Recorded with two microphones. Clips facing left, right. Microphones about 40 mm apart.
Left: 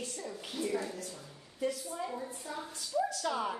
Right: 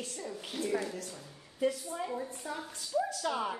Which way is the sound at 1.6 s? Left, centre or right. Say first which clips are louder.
Right 3 dB; centre.